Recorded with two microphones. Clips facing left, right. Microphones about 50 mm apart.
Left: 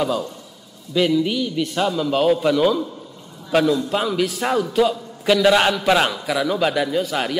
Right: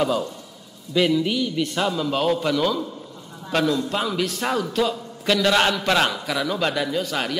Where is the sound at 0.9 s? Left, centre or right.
Centre.